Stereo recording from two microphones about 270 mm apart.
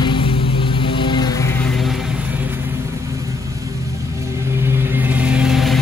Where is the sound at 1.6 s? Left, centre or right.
Centre.